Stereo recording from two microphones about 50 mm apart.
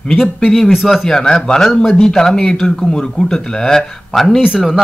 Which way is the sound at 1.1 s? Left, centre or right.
Centre.